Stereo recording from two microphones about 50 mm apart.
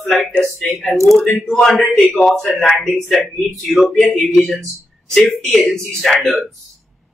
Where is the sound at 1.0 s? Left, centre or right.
Centre.